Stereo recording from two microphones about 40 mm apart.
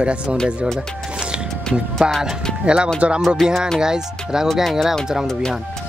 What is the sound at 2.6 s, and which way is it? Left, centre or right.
Speech, right.